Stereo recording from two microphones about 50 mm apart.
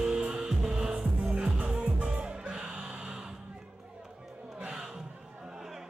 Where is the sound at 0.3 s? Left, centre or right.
Centre.